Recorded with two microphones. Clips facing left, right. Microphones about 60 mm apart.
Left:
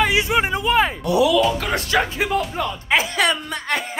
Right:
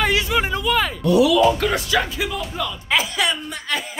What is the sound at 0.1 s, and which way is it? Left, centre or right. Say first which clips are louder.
Speech: left 1 dB; left.